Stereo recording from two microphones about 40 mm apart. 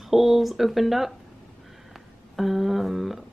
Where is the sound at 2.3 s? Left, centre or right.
Centre.